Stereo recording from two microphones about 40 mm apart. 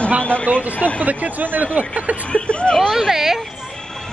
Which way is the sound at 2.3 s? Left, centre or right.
Left.